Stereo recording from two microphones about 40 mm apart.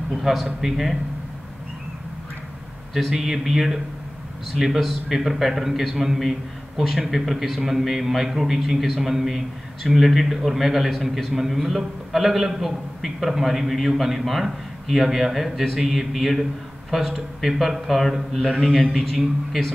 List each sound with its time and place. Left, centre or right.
0.1 s a man's voice: centre
2.9 s a man's voice: centre